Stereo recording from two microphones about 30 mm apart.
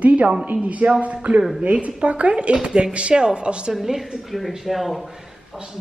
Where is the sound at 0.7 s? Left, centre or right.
Right.